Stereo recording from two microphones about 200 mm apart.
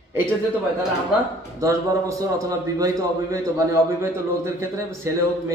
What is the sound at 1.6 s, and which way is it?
A man's voice, 15° right (ahead or behind).